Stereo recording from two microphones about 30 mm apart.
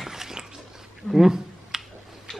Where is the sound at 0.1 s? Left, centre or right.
Centre.